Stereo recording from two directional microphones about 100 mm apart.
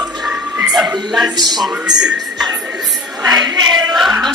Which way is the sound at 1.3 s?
45° right (ahead or behind).